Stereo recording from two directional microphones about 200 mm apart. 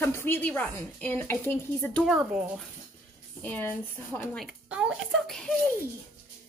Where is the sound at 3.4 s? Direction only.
10° left (ahead or behind).